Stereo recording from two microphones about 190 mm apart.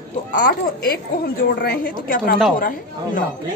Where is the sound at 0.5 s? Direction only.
55° left (ahead or behind).